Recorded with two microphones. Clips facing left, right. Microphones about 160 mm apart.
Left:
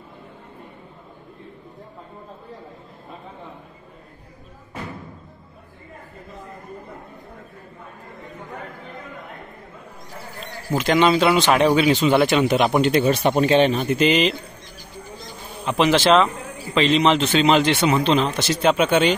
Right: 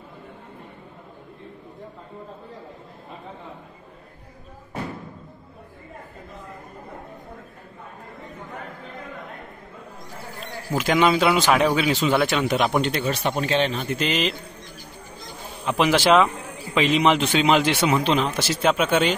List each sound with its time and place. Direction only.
10.7 s speech: 5° right (ahead or behind)
13.0 s speech: 20° left (ahead or behind)
13.9 s speech: centre (ahead or behind)
15.6 s a man's voice: 5° right (ahead or behind)